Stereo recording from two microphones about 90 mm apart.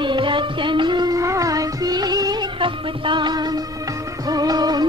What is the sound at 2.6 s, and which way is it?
Music, 60° right (ahead or behind).